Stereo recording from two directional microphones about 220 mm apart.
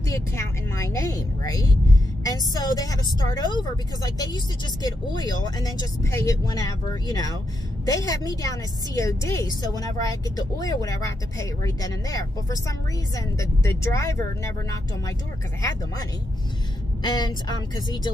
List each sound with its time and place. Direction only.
0.1 s a woman's voice: 15° left (ahead or behind)
4.8 s a woman's voice: 20° left (ahead or behind)
17.0 s a woman's voice: 20° left (ahead or behind)